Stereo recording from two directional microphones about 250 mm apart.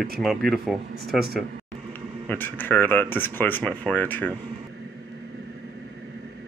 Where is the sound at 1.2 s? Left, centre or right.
Right.